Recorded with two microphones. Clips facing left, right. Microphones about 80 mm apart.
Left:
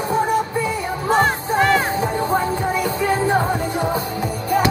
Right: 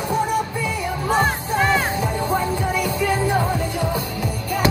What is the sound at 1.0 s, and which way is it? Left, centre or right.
Music, left.